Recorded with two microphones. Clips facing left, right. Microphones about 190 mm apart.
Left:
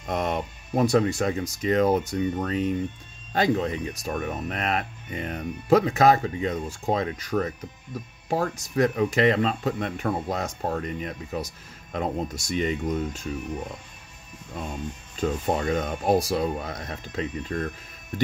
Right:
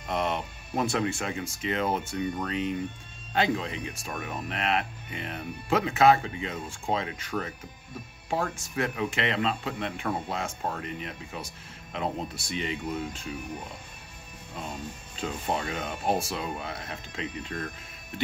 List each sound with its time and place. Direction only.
0.0 s speech: 45° left (ahead or behind)
15.1 s speech: 45° left (ahead or behind)